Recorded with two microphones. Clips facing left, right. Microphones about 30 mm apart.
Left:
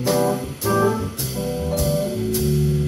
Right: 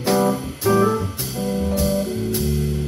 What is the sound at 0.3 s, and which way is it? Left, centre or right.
Music, centre.